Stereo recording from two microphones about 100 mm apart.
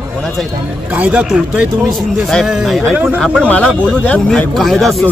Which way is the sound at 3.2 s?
10° left (ahead or behind).